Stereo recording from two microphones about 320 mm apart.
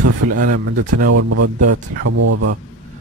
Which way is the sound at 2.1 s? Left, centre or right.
Right.